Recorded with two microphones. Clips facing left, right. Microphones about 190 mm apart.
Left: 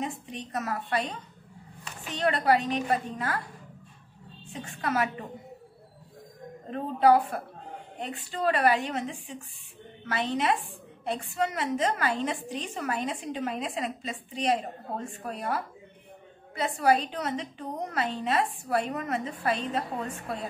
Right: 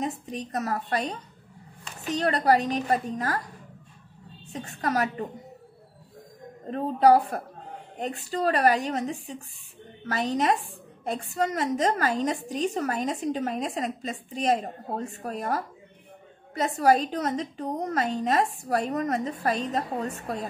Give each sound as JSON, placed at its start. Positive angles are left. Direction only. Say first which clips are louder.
{"t": 0.0, "sound": "a woman's voice", "louder": "right 4 dB", "side_deg": -40}
{"t": 4.5, "sound": "a woman's voice", "louder": "right 2 dB", "side_deg": -40}
{"t": 6.7, "sound": "a woman's voice", "louder": "right 2 dB", "side_deg": -40}